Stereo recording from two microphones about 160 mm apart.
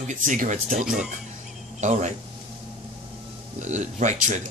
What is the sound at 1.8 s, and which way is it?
Speech, 50° right (ahead or behind).